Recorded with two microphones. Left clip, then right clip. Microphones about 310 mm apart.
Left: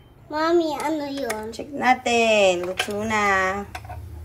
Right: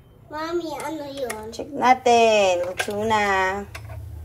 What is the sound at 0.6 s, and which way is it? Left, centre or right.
Speech, left.